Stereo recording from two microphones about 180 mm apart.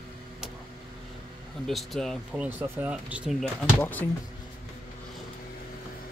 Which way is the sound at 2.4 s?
10° right (ahead or behind).